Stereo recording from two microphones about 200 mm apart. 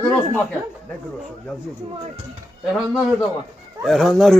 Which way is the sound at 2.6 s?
Centre (ahead or behind).